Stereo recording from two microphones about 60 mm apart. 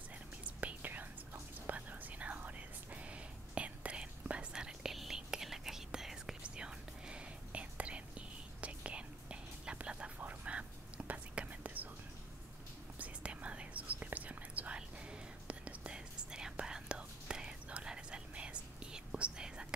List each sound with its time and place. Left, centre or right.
0.6 s whispering: right
13.0 s whispering: right